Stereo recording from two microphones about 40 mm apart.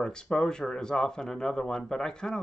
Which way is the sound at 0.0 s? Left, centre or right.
Centre.